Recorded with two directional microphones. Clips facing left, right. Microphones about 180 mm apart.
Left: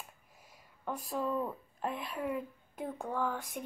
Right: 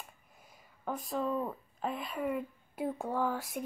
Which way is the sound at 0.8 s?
Centre (ahead or behind).